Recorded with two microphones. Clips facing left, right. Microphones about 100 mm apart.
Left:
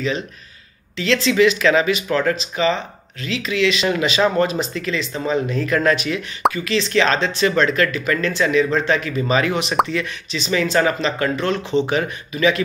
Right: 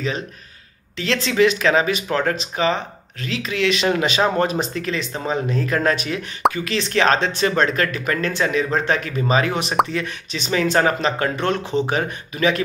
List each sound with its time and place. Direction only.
0.9 s speech: 45° right (ahead or behind)
6.5 s speech: 45° right (ahead or behind)
9.2 s speech: 30° right (ahead or behind)
9.5 s speech: 45° right (ahead or behind)
11.3 s speech: 55° right (ahead or behind)
11.8 s speech: 40° right (ahead or behind)